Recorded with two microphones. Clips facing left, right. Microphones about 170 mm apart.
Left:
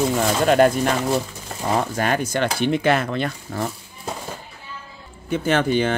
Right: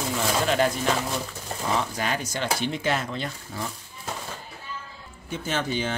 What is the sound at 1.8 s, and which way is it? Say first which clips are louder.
Speech: left 6 dB; 55° left (ahead or behind).